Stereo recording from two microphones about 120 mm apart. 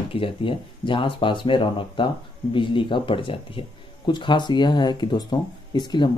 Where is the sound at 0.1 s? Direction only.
45° left (ahead or behind).